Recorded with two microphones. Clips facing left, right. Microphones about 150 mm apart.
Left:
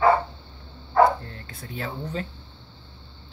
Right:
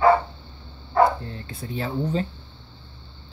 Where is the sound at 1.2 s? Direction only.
25° right (ahead or behind).